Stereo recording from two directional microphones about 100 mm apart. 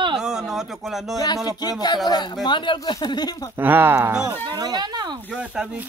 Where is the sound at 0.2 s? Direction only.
5° right (ahead or behind).